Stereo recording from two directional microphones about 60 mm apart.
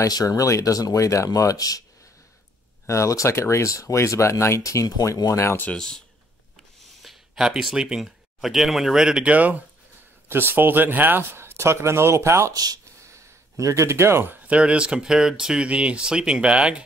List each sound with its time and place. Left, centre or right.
0.0 s speech: left
2.9 s speech: left
5.8 s speech: centre
7.0 s a sound: centre
7.7 s speech: centre
9.3 s speech: right
10.2 s speech: right
12.5 s speech: right
13.1 s speech: right
14.5 s speech: centre